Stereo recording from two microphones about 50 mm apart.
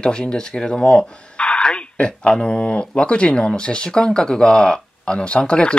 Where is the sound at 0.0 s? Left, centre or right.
Centre.